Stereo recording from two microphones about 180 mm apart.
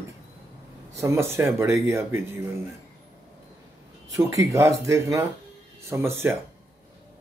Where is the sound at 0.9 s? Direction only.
15° right (ahead or behind).